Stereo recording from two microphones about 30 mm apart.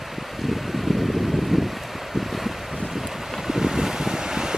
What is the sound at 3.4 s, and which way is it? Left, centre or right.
Vehicle, centre.